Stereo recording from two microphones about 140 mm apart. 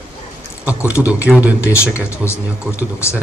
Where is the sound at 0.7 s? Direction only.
10° right (ahead or behind).